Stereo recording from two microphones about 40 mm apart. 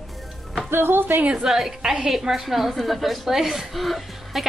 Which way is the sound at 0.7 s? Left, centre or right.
Right.